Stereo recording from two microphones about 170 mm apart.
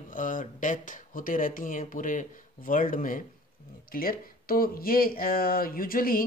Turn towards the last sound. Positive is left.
turn(degrees=55)  # may be behind; listen again after turning